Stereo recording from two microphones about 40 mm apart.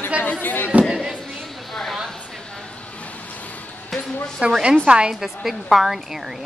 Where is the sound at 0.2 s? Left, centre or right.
Left.